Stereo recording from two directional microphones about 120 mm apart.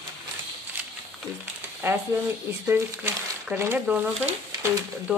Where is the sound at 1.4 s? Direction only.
20° right (ahead or behind).